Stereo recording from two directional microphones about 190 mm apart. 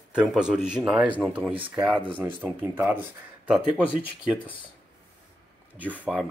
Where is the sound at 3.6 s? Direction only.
25° left (ahead or behind).